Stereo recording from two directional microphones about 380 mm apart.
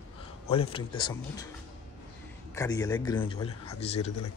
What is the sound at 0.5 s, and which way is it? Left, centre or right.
Speech, centre.